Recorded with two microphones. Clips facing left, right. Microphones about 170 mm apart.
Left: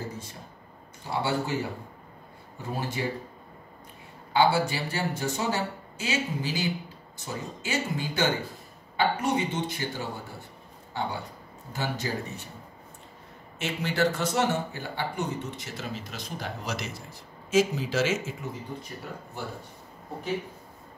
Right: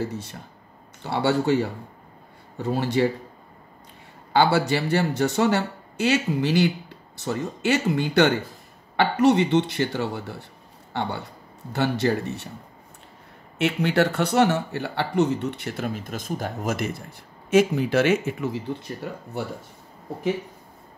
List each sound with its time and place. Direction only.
1.0 s speech: 70° right (ahead or behind)
4.3 s speech: 70° right (ahead or behind)
13.6 s speech: 65° right (ahead or behind)